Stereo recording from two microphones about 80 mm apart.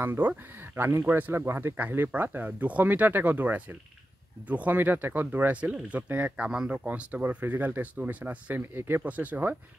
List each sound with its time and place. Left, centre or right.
0.0 s speech: right
8.7 s speech: right
9.0 s speech: centre